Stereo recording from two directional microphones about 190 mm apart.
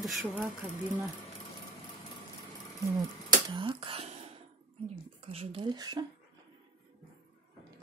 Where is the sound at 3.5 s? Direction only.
25° right (ahead or behind).